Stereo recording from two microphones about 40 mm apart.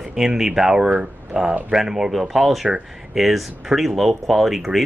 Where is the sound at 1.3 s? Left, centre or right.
Right.